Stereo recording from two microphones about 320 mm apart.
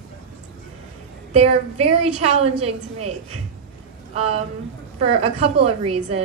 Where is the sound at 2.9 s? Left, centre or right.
Right.